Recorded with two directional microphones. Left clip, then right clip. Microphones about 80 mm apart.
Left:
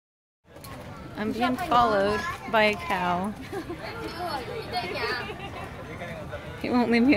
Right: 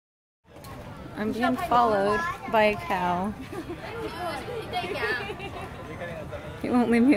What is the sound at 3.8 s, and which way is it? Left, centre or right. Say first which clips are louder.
Speech: right 1 dB; centre.